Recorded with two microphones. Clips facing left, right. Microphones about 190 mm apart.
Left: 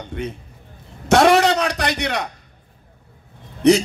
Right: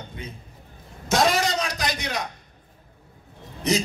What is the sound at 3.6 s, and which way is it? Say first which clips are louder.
Speech: left 10 dB; 65° left (ahead or behind).